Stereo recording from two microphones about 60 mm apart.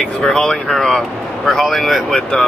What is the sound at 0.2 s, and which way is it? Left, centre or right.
Speech, centre.